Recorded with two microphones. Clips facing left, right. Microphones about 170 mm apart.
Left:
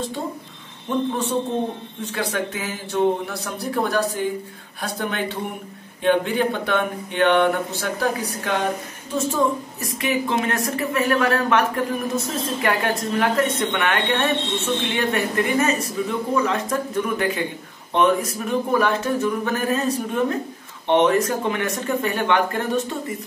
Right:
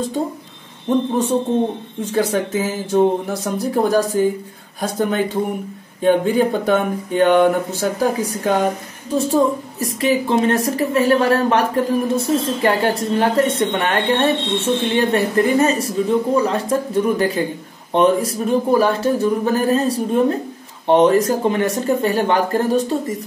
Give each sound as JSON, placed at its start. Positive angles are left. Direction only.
{"t": 2.1, "sound": "speech", "side_deg": -45}
{"t": 9.1, "sound": "speech", "side_deg": -35}